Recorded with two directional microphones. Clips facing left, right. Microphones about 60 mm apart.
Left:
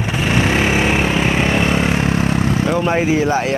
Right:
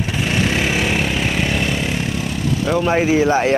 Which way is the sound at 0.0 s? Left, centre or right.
Left.